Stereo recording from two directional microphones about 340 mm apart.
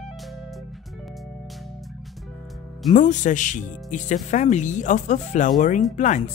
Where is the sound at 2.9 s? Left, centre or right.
Left.